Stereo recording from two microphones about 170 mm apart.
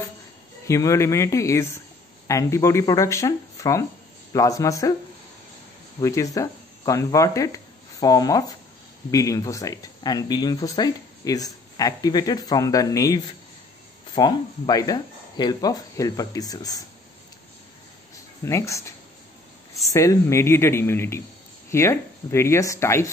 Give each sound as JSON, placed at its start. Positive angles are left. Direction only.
{"t": 0.7, "sound": "speech", "side_deg": 15}
{"t": 5.9, "sound": "speech", "side_deg": 20}
{"t": 18.4, "sound": "speech", "side_deg": 15}